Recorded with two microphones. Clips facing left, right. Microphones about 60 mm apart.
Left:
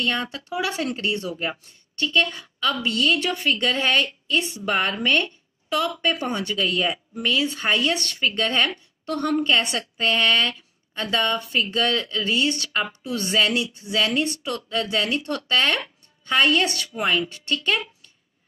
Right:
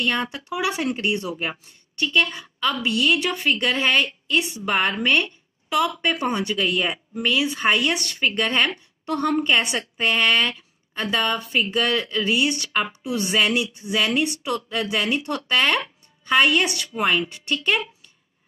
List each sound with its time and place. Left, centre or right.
0.0 s a woman's voice: centre